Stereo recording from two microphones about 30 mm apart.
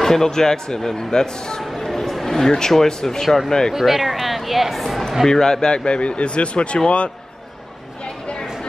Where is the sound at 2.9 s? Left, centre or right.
Left.